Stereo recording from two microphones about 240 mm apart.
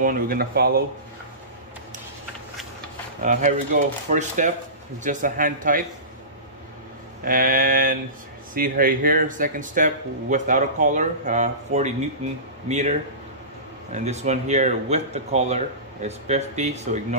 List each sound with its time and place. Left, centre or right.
0.0 s speech: right
3.2 s speech: right
7.2 s speech: right
13.9 s speech: right